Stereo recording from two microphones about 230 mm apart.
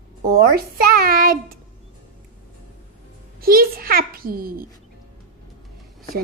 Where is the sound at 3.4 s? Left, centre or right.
Right.